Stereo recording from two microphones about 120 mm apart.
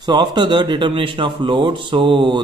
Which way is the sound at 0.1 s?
40° right (ahead or behind).